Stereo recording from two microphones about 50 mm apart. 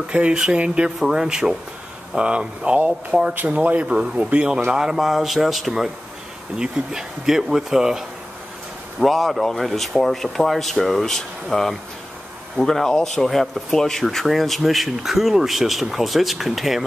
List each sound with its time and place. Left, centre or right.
0.0 s speech: right
0.9 s speech: centre
4.9 s speech: centre
9.0 s speech: centre